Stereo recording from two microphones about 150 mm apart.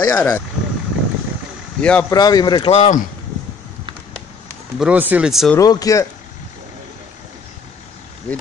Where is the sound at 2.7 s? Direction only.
50° left (ahead or behind).